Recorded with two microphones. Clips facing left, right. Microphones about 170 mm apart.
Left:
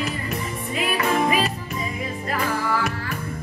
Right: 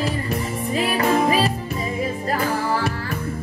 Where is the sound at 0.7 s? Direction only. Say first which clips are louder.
Right 3 dB; 35° right (ahead or behind).